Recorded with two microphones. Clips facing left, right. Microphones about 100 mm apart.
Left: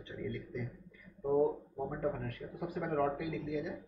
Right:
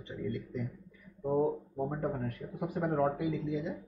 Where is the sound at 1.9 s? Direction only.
30° right (ahead or behind).